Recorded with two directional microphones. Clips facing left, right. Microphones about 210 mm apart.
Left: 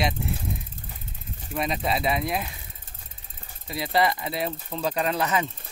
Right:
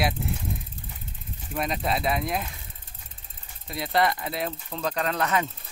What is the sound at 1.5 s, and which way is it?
Speech, centre (ahead or behind).